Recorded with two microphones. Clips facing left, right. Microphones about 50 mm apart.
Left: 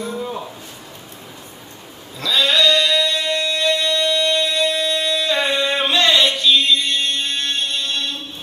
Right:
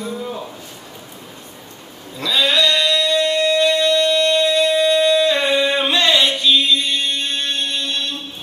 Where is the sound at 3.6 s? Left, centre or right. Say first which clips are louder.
Right 2 dB; centre.